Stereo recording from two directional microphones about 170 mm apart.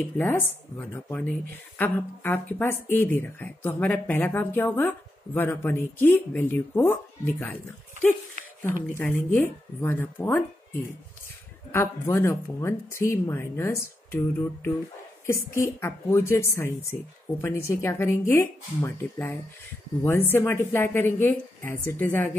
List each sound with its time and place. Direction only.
0.0 s speech: 10° left (ahead or behind)
8.9 s speech: 10° left (ahead or behind)